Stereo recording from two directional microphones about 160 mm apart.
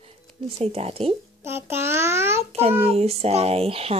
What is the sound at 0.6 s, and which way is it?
Speech, 40° right (ahead or behind).